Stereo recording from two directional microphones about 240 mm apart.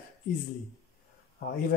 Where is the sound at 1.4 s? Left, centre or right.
Left.